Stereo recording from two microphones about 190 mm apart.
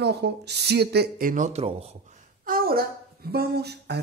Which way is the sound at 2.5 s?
50° right (ahead or behind).